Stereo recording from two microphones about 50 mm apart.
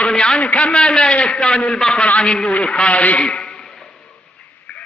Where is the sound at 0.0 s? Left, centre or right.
Centre.